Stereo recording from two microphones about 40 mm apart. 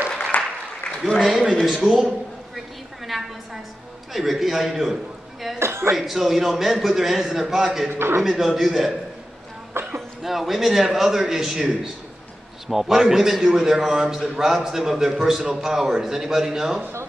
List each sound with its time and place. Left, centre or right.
0.3 s applause: left
1.2 s a man's voice: centre
1.8 s a sound: centre
4.1 s a man's voice: centre
5.6 s a man's voice: right
5.9 s a man's voice: centre
7.9 s a man's voice: right
8.2 s a man's voice: centre
9.8 s a sound: right
10.2 s a man's voice: centre